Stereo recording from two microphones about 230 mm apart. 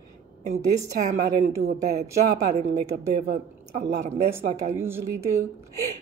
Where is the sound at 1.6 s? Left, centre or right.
Right.